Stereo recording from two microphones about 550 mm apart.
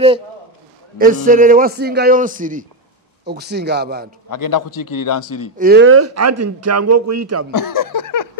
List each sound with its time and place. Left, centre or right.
0.9 s a man's voice: centre
4.3 s a man's voice: left
5.6 s speech: centre
7.5 s a sound: left